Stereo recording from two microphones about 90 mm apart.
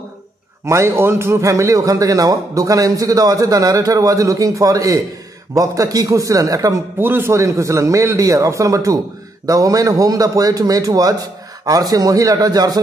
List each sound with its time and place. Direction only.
0.7 s a man's voice: 30° right (ahead or behind)
7.0 s a man's voice: 25° right (ahead or behind); by 12.8 s 45° right (ahead or behind)